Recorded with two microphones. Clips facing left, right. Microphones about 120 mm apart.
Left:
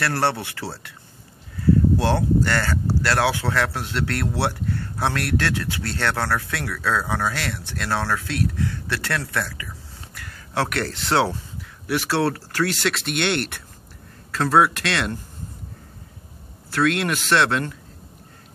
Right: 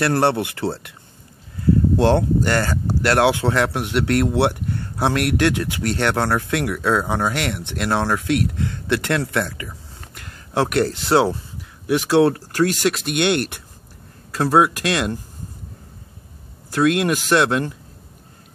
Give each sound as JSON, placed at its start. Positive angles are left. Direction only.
{"t": 0.0, "sound": "speech", "side_deg": -15}
{"t": 2.0, "sound": "speech", "side_deg": -20}
{"t": 16.7, "sound": "speech", "side_deg": -15}